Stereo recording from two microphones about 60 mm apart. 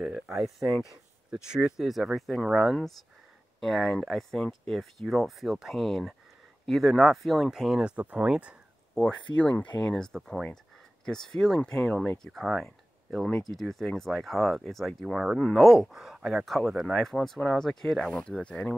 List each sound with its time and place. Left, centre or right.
0.0 s speech: centre
7.8 s speech: right
8.9 s speech: centre
12.3 s speech: centre